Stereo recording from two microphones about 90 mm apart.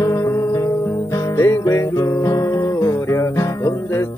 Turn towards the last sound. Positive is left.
turn(degrees=30)  # may be behind; listen again after turning